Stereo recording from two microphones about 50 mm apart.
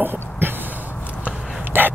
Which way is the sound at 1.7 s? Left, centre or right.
Right.